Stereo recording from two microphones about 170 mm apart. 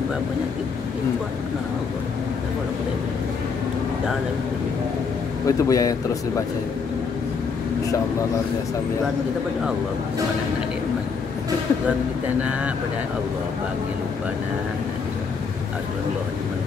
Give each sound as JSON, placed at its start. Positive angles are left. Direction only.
{"t": 5.6, "sound": "speech", "side_deg": 20}